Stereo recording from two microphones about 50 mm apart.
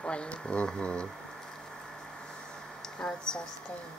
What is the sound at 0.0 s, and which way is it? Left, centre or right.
Speech, left.